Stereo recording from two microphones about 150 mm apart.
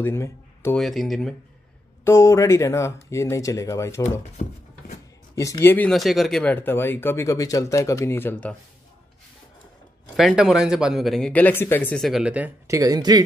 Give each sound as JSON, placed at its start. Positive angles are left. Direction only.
{"t": 0.0, "sound": "speech", "side_deg": 15}
{"t": 0.7, "sound": "speech", "side_deg": 0}
{"t": 2.0, "sound": "speech", "side_deg": 20}
{"t": 5.3, "sound": "speech", "side_deg": 20}
{"t": 5.9, "sound": "speech", "side_deg": 0}
{"t": 10.1, "sound": "speech", "side_deg": 0}
{"t": 12.7, "sound": "speech", "side_deg": -25}